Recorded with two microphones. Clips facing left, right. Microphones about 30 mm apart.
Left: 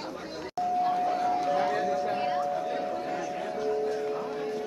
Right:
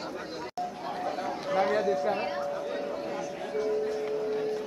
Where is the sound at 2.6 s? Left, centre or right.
Centre.